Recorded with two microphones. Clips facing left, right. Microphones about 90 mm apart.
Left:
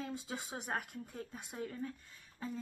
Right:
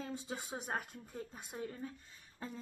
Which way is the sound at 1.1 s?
20° right (ahead or behind).